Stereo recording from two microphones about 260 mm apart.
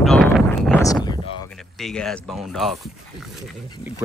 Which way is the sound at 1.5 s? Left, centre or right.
Centre.